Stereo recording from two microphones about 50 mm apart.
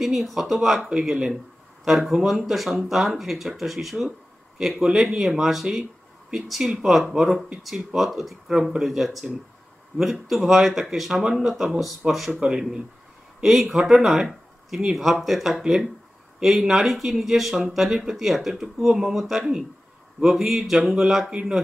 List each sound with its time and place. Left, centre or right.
0.0 s speech: centre
12.3 s speech: centre
13.4 s speech: centre
21.3 s speech: centre